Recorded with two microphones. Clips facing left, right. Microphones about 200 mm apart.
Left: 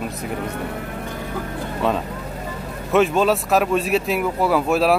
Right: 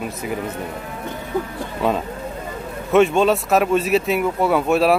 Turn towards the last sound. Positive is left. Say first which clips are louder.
# right 1 dB
turn(degrees=0)  # may be behind; listen again after turning